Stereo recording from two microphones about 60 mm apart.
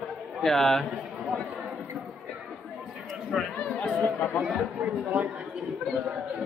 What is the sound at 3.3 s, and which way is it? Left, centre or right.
Speech, centre.